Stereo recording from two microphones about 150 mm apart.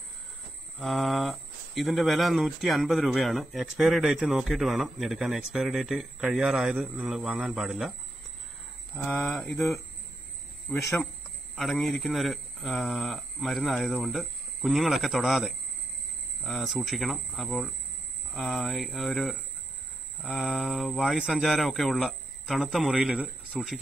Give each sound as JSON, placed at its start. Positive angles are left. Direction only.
{"t": 0.7, "sound": "speech", "side_deg": 0}
{"t": 8.9, "sound": "speech", "side_deg": 10}
{"t": 10.7, "sound": "speech", "side_deg": 5}